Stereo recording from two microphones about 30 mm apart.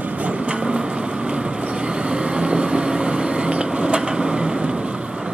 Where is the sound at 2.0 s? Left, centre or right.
Right.